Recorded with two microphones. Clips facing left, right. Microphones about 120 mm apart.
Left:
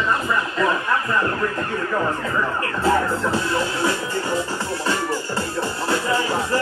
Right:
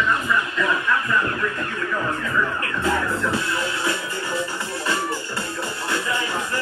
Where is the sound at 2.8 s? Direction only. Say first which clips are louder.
Left 4 dB; 35° left (ahead or behind).